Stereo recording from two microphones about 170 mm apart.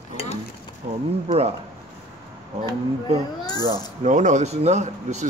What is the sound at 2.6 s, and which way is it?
Speech, 30° right (ahead or behind).